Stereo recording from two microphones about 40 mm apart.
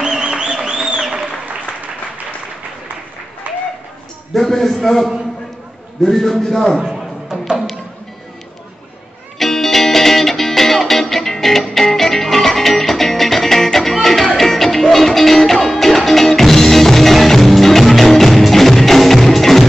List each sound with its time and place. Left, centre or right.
0.0 s a sound: centre
3.4 s applause: right
4.3 s a man's voice: centre
6.8 s music: centre
9.4 s music: centre